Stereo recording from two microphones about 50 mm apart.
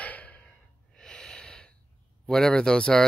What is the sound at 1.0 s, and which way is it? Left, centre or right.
Breathing, centre.